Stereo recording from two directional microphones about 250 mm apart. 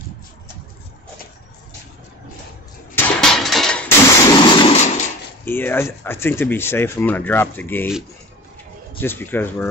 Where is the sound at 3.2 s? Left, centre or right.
Centre.